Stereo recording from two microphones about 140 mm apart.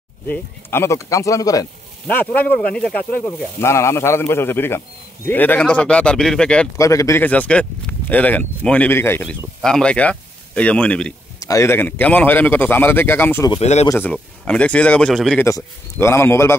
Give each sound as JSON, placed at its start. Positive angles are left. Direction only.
{"t": 0.3, "sound": "speech", "side_deg": 15}
{"t": 2.0, "sound": "a man's voice", "side_deg": 10}
{"t": 3.6, "sound": "a man's voice", "side_deg": 20}
{"t": 6.8, "sound": "a man's voice", "side_deg": 25}
{"t": 11.3, "sound": "a man's voice", "side_deg": 25}
{"t": 13.6, "sound": "speech", "side_deg": 50}
{"t": 13.8, "sound": "a man's voice", "side_deg": 15}
{"t": 15.3, "sound": "speech", "side_deg": 20}